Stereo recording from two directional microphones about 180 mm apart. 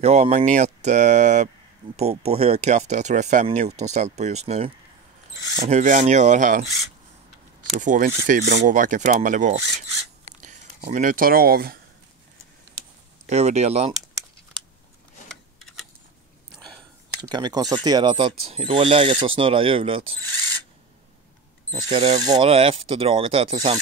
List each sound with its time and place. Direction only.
0.0 s speech: 35° right (ahead or behind)
7.7 s speech: 45° right (ahead or behind); by 8.6 s 65° right (ahead or behind)
8.6 s speech: 45° right (ahead or behind)
13.3 s speech: 40° right (ahead or behind)
15.2 s a sound: centre (ahead or behind)
17.2 s speech: 25° right (ahead or behind)
21.8 s speech: 35° right (ahead or behind)